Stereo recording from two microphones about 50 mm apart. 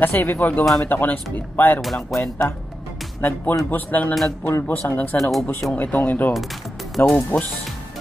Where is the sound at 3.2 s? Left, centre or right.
Left.